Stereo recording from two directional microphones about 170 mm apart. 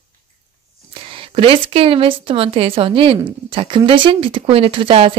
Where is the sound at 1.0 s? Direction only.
30° right (ahead or behind).